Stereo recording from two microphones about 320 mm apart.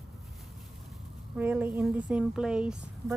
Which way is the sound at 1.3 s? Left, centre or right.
Centre.